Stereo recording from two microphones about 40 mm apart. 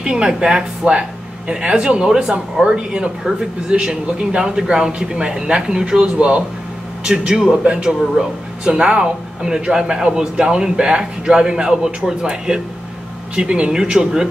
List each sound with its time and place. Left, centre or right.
0.0 s a man's voice: right